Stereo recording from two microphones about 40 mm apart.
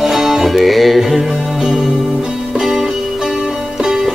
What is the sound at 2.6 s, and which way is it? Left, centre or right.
Music, centre.